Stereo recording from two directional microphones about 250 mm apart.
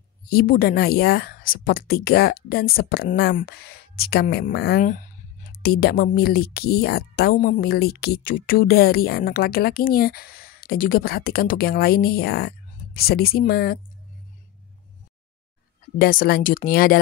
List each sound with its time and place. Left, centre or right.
0.3 s a woman's voice: left
16.0 s a woman's voice: left